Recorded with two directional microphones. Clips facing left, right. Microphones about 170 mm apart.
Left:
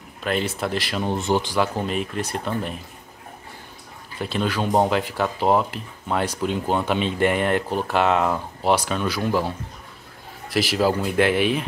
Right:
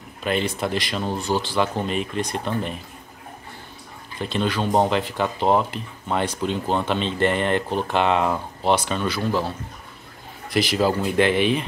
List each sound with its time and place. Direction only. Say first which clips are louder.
0.2 s speech: right 1 dB; centre (ahead or behind)
1.0 s speech: left 5 dB; 20° left (ahead or behind); by 2.7 s 5° left (ahead or behind)
4.2 s speech: even; 5° left (ahead or behind)
10.5 s speech: even; 5° left (ahead or behind)